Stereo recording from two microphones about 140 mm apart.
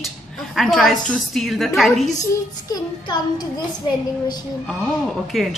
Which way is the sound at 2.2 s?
25° left (ahead or behind).